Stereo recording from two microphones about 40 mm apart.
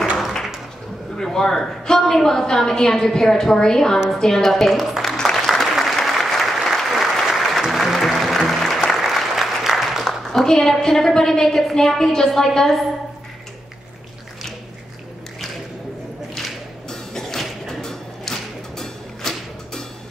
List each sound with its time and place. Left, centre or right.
1.1 s a woman's voice: centre
4.6 s speech: centre
5.3 s applause: centre
10.0 s a woman's voice: centre
16.3 s music: centre